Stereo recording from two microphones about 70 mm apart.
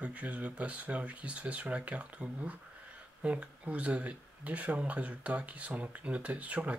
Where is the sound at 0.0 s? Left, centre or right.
Centre.